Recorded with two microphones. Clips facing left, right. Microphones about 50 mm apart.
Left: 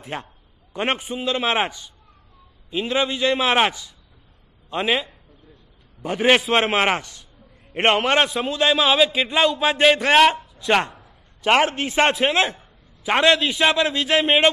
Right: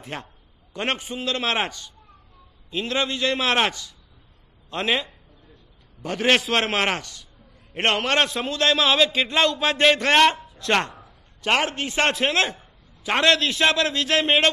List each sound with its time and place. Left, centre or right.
0.1 s a man's voice: centre
8.3 s a man's voice: centre
11.4 s a man's voice: left